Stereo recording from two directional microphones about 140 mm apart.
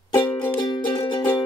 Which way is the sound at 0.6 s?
25° left (ahead or behind).